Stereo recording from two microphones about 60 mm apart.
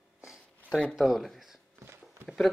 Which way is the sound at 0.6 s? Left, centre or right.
Centre.